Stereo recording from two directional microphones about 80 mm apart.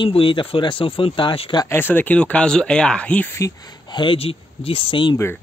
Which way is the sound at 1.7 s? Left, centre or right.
Left.